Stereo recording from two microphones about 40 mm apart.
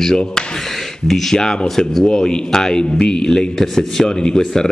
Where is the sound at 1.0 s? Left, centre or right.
Centre.